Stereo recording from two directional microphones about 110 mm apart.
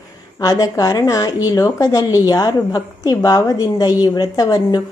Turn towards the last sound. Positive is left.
turn(degrees=35)  # may be behind; listen again after turning